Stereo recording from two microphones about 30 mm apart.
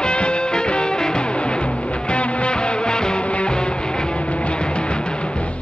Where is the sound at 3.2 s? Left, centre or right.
Left.